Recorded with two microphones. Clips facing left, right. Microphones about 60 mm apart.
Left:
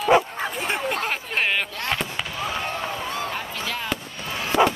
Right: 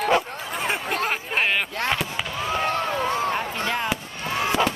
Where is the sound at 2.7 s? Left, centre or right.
Right.